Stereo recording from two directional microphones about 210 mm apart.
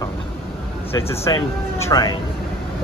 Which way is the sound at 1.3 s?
20° left (ahead or behind).